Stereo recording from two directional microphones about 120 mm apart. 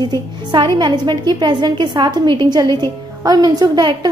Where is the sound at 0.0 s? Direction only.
40° right (ahead or behind).